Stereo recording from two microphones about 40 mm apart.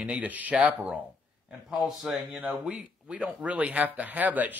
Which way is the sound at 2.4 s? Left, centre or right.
Right.